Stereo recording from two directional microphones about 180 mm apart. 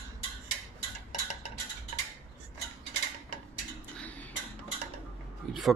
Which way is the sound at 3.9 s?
10° left (ahead or behind).